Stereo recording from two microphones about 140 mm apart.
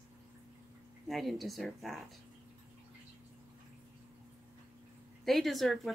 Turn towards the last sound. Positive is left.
turn(degrees=0)  # may be behind; listen again after turning